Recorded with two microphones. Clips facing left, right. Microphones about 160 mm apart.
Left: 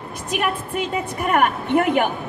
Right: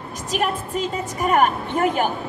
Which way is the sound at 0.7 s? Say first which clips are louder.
Left 1 dB; 60° left (ahead or behind).